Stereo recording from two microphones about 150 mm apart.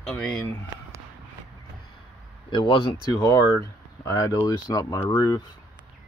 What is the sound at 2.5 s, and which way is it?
Speech, 35° left (ahead or behind).